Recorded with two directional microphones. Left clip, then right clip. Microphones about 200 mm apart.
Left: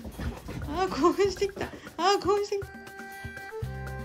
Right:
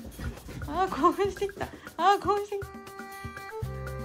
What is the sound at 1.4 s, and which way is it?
A woman's voice, 5° left (ahead or behind).